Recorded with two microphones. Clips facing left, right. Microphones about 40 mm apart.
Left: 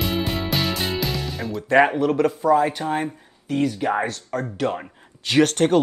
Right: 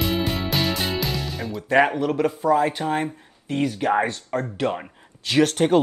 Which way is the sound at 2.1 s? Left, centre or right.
Centre.